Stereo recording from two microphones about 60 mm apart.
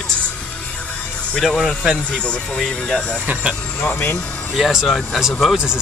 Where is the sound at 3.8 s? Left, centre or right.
Left.